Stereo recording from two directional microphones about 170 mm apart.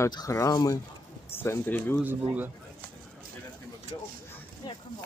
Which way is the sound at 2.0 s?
10° right (ahead or behind).